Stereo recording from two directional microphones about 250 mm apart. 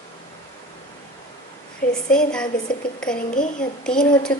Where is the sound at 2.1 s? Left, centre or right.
Centre.